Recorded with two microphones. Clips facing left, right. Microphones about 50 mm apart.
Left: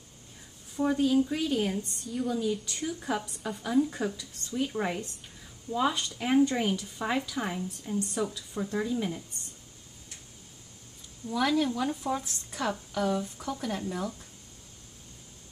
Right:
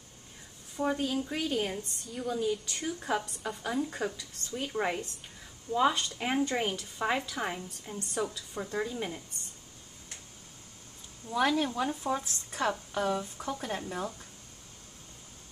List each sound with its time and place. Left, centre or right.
0.7 s speech: centre
11.3 s speech: centre
12.2 s speech: right